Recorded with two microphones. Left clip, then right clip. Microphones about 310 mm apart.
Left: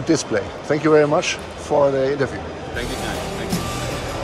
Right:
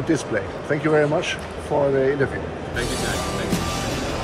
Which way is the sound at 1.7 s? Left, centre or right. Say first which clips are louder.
Left 4 dB; left.